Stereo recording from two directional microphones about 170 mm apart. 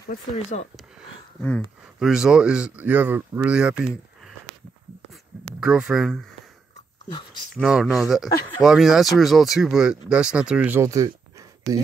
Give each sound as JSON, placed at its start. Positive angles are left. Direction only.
{"t": 0.1, "sound": "speech", "side_deg": 45}
{"t": 1.4, "sound": "speech", "side_deg": 10}
{"t": 2.0, "sound": "speech", "side_deg": -5}
{"t": 5.6, "sound": "speech", "side_deg": -5}
{"t": 7.5, "sound": "speech", "side_deg": 0}